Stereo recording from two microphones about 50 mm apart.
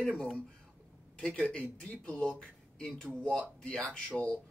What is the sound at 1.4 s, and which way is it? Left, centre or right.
Speech, left.